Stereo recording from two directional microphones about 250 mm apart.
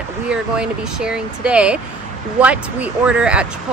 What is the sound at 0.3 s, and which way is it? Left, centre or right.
Speech, centre.